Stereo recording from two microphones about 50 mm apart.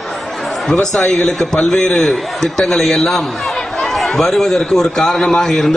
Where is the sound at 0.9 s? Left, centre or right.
Centre.